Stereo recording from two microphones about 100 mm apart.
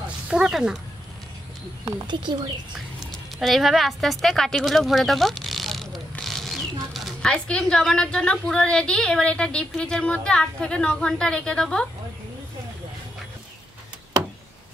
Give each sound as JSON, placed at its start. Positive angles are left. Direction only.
{"t": 0.3, "sound": "speech", "side_deg": -5}
{"t": 2.0, "sound": "a woman's voice", "side_deg": -50}
{"t": 3.1, "sound": "speech", "side_deg": 0}